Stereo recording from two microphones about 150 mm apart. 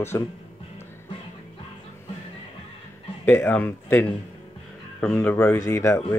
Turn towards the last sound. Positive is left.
turn(degrees=20)  # may be behind; listen again after turning